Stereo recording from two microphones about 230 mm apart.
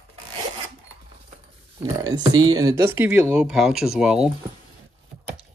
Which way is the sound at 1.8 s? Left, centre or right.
Centre.